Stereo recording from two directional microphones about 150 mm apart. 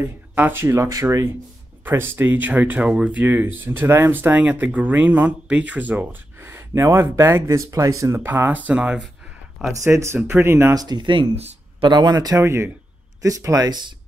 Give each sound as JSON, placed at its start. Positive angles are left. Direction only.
{"t": 0.0, "sound": "speech", "side_deg": -15}
{"t": 11.9, "sound": "speech", "side_deg": -25}